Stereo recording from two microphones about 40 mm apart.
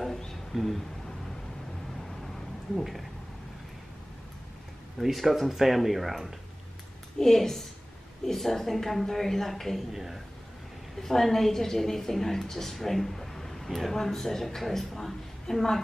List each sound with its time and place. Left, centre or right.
0.5 s speech: centre
2.7 s speech: centre
5.0 s speech: centre
7.2 s a woman's voice: centre
9.9 s speech: centre
11.0 s a woman's voice: centre